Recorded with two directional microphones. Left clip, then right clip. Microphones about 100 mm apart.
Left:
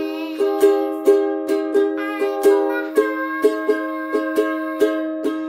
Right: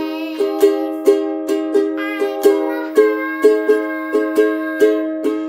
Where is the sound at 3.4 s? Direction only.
30° right (ahead or behind).